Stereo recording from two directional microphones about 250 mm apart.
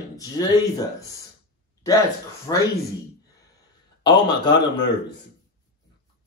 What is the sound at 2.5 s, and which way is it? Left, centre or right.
Speech, centre.